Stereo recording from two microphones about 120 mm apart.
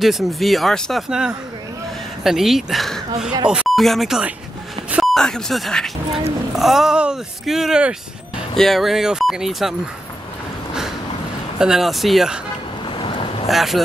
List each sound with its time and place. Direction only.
0.0 s speech: centre (ahead or behind)
11.5 s speech: 5° right (ahead or behind)
12.9 s vehicle: 45° left (ahead or behind)
13.5 s speech: centre (ahead or behind)